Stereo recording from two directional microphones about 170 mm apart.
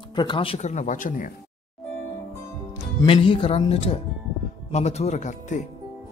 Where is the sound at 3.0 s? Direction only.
30° left (ahead or behind).